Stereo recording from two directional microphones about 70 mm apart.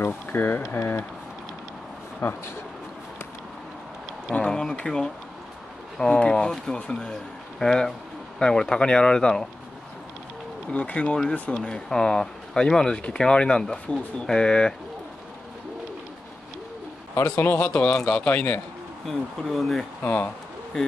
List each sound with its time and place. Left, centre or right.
0.0 s speech: left
2.2 s speech: left
4.3 s speech: centre
10.7 s speech: centre
17.1 s a man's voice: left
19.0 s speech: centre
20.0 s speech: left
20.7 s speech: centre